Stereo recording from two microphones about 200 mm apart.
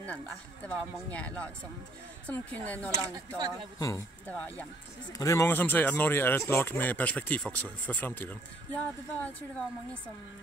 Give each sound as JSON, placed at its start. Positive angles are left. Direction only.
{"t": 0.0, "sound": "speech", "side_deg": 5}
{"t": 3.3, "sound": "speech", "side_deg": -20}
{"t": 3.8, "sound": "speech", "side_deg": 10}